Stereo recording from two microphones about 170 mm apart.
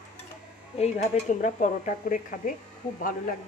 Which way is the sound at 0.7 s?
40° left (ahead or behind).